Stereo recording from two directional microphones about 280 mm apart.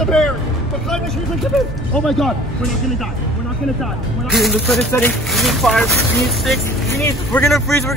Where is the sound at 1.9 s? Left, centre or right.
Centre.